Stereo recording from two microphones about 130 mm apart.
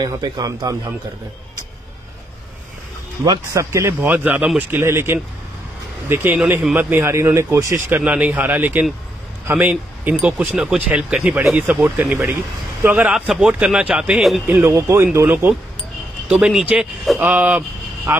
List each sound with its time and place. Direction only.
0.0 s speech: 30° right (ahead or behind)
3.3 s speech: 25° right (ahead or behind); by 14.4 s 5° right (ahead or behind)
14.5 s speech: 20° right (ahead or behind)